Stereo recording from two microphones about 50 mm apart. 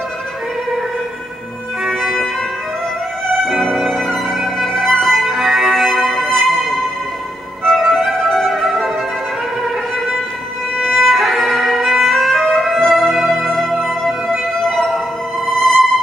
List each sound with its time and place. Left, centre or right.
1.9 s music: centre
3.7 s violin: centre
5.2 s music: centre
7.8 s music: centre
9.6 s violin: centre
12.8 s music: centre